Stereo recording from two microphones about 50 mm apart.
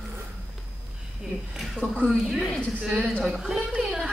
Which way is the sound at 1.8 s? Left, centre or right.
Left.